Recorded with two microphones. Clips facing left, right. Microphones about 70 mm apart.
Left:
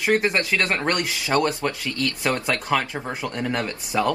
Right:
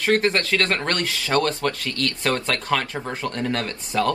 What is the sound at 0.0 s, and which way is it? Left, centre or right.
Speech, centre.